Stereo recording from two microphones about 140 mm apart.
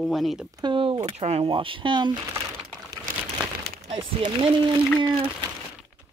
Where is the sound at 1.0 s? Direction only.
50° right (ahead or behind).